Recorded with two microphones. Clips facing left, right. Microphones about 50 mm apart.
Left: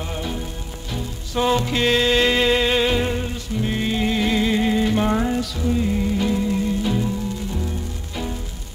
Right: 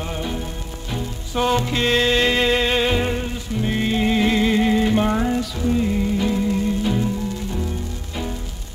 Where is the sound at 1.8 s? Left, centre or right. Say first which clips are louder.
Even; right.